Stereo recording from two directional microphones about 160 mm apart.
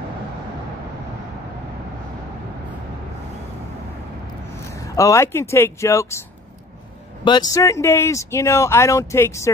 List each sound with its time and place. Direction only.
4.7 s speech: 20° left (ahead or behind)
7.2 s speech: 25° left (ahead or behind)